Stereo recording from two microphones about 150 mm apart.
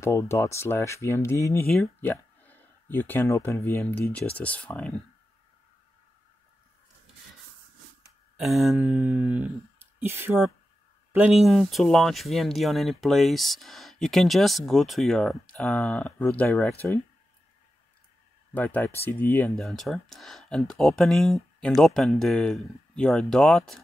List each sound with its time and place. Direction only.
0.0 s speech: 20° left (ahead or behind)
8.4 s speech: centre (ahead or behind)
8.9 s speech: 15° right (ahead or behind)
11.1 s speech: 5° right (ahead or behind); by 17.0 s 10° left (ahead or behind)
18.5 s speech: 10° left (ahead or behind)
19.5 s speech: centre (ahead or behind)